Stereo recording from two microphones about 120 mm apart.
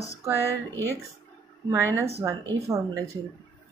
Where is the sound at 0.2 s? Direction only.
20° right (ahead or behind).